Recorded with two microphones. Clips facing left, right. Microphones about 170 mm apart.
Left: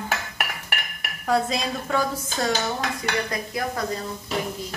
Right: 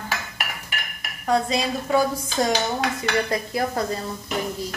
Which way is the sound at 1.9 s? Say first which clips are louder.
Right 4 dB; 10° right (ahead or behind).